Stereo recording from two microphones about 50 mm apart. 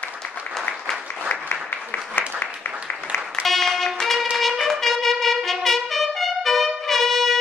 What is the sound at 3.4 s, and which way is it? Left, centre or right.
Music, centre.